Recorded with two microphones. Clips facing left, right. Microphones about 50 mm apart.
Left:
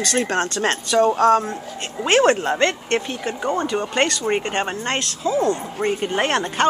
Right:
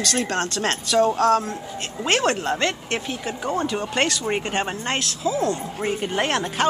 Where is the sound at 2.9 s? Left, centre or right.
Centre.